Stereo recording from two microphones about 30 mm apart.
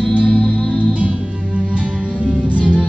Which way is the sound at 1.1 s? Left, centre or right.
Centre.